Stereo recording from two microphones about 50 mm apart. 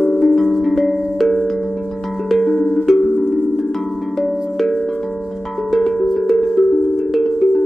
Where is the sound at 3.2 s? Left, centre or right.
Left.